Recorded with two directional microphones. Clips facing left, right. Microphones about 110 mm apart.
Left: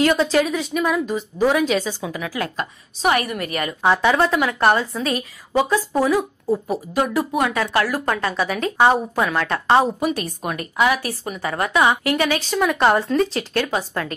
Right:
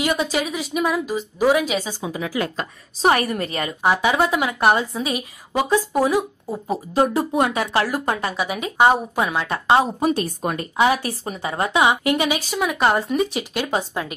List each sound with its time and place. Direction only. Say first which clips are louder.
0.0 s speech: left 5 dB; 10° right (ahead or behind)
3.0 s a woman's voice: right 2 dB; 35° right (ahead or behind)
3.8 s speech: left 1 dB; 10° right (ahead or behind)
6.9 s a woman's voice: right 2 dB; 30° right (ahead or behind); by 9.8 s 10° right (ahead or behind)
9.9 s speech: right 2 dB; 35° right (ahead or behind); by 13.0 s 5° right (ahead or behind)
13.1 s speech: left 2 dB; 15° right (ahead or behind)